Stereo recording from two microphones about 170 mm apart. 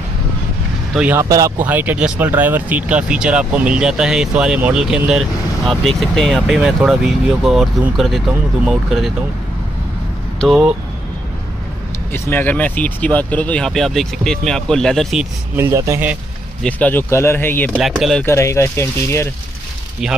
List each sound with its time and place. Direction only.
0.9 s speech: 10° right (ahead or behind)
10.4 s speech: centre (ahead or behind)
12.1 s speech: 10° left (ahead or behind)
15.5 s speech: 15° right (ahead or behind)
16.6 s speech: 10° left (ahead or behind)
17.7 s speech: centre (ahead or behind)
18.2 s speech: 15° left (ahead or behind)
20.0 s speech: centre (ahead or behind)